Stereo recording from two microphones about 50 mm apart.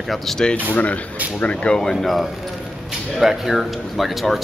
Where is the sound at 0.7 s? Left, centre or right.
Left.